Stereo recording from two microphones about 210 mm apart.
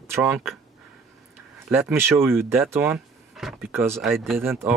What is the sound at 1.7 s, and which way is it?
Speech, 10° right (ahead or behind).